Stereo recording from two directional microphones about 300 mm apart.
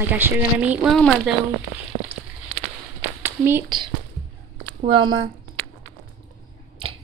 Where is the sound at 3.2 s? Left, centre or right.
Centre.